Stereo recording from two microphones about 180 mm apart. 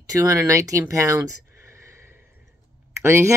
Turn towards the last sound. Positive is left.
turn(degrees=-15)  # may be behind; listen again after turning